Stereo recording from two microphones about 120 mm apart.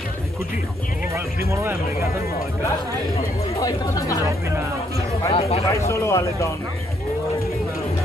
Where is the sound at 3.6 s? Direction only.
25° left (ahead or behind).